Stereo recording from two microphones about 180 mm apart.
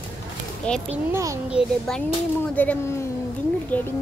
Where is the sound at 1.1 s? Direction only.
15° right (ahead or behind).